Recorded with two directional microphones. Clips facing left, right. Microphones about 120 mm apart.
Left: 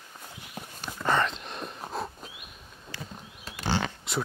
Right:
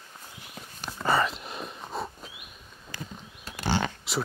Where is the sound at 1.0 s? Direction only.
5° right (ahead or behind).